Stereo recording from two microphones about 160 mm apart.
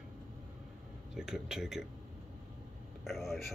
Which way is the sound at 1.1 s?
5° right (ahead or behind).